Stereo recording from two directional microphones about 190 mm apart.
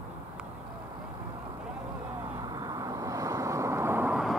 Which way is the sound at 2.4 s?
20° right (ahead or behind).